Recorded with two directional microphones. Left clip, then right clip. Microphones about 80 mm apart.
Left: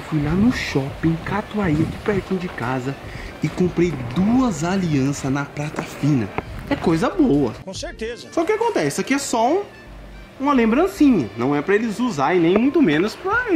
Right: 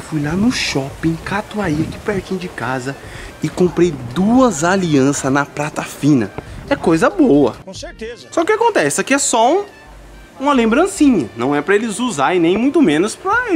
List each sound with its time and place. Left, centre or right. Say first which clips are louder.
0.3 s speech: right 4 dB; right
3.3 s speech: right 6 dB; right
7.8 s speech: left 1 dB; centre
8.4 s speech: right 6 dB; right